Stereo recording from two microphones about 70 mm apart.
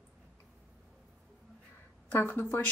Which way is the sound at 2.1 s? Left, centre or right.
Left.